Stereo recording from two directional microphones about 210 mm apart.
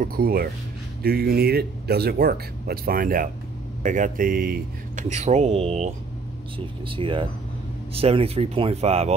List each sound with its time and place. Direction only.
0.0 s speech: 45° right (ahead or behind)
5.1 s speech: 35° right (ahead or behind)